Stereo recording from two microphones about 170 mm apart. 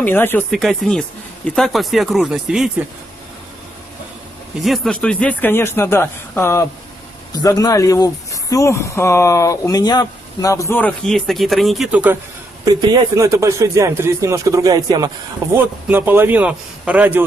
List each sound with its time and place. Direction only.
0.0 s speech: 10° left (ahead or behind)
0.5 s speech: centre (ahead or behind)
4.6 s speech: centre (ahead or behind)
12.6 s speech: 20° right (ahead or behind)
15.5 s a man's voice: 10° right (ahead or behind)